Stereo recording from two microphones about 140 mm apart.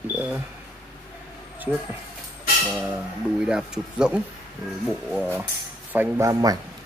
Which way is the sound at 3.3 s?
5° right (ahead or behind).